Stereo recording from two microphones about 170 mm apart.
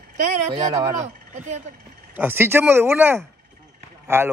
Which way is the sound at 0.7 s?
25° right (ahead or behind).